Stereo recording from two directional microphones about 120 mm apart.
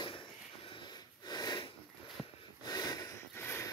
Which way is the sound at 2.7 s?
30° left (ahead or behind).